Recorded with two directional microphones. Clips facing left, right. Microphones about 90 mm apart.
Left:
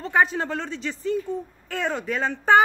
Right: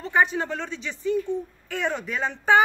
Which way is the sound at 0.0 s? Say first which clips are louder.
Left 1 dB; 40° left (ahead or behind).